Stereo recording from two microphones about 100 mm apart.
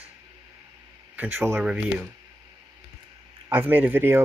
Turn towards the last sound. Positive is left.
turn(degrees=-20)  # may be behind; listen again after turning